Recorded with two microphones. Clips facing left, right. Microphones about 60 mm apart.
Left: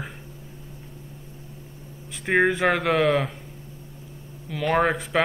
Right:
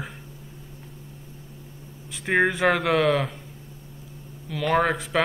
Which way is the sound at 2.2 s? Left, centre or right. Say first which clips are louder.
Even; centre.